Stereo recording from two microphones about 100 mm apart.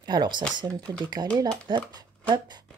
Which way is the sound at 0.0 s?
45° right (ahead or behind).